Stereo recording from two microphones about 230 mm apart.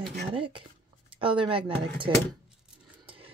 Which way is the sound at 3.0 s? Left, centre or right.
Right.